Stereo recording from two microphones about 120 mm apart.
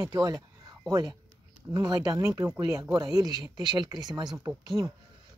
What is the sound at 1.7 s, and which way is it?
Speech, 30° right (ahead or behind).